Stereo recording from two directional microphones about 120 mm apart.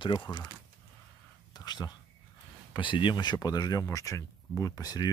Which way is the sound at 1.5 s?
35° left (ahead or behind).